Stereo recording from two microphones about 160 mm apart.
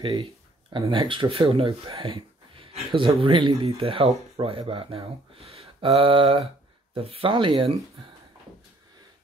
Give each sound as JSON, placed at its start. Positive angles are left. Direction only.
{"t": 0.0, "sound": "speech", "side_deg": -30}